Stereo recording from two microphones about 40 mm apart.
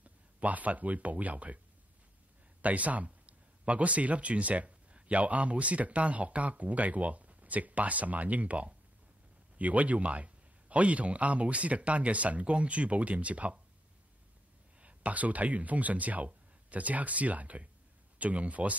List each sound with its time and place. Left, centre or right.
0.0 s speech: right
2.6 s a man's voice: right
14.8 s a man's voice: right